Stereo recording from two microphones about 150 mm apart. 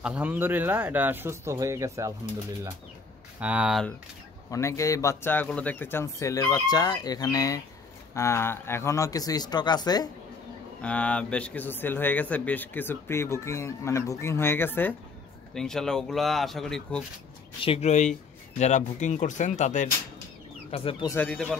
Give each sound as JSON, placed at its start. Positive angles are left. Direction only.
{"t": 0.0, "sound": "speech", "side_deg": -10}
{"t": 3.3, "sound": "speech", "side_deg": -10}
{"t": 4.5, "sound": "speech", "side_deg": 20}
{"t": 10.8, "sound": "speech", "side_deg": 10}
{"t": 17.6, "sound": "speech", "side_deg": 40}
{"t": 20.7, "sound": "speech", "side_deg": 45}
{"t": 21.2, "sound": "speech", "side_deg": 5}